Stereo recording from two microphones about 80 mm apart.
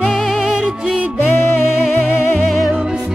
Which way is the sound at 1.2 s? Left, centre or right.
Left.